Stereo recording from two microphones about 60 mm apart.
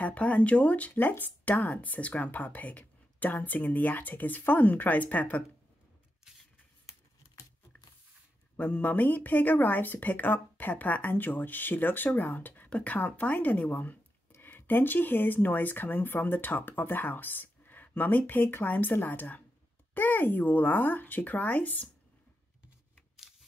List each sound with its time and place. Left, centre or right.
0.0 s speech: left
8.5 s speech: left